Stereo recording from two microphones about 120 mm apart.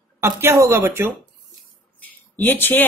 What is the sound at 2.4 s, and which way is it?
Speech, 15° left (ahead or behind).